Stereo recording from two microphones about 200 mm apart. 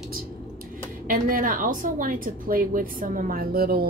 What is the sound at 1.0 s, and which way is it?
A woman's voice, 45° right (ahead or behind).